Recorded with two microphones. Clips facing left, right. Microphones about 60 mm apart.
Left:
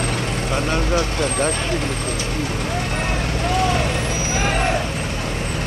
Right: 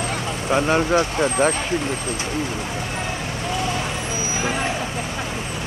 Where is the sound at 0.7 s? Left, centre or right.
Right.